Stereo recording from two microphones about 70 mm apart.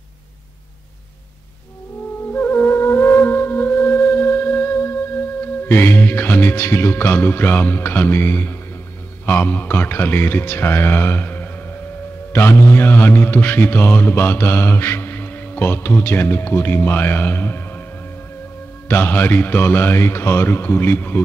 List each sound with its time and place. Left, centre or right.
2.3 s music: left
5.7 s a man's voice: left
18.9 s a man's voice: left